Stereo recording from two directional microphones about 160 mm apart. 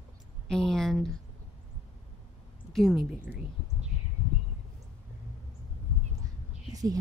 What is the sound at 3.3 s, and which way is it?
Speech, 10° right (ahead or behind).